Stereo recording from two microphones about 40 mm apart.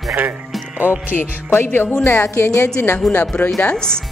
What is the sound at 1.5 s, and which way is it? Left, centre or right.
Speech, left.